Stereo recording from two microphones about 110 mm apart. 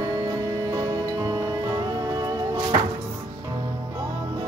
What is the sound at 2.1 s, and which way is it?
Music, 35° right (ahead or behind).